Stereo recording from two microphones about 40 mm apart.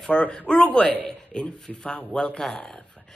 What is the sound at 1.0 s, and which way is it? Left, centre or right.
Speech, centre.